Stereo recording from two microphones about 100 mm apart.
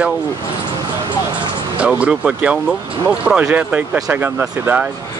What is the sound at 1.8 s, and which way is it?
Speech, 10° right (ahead or behind).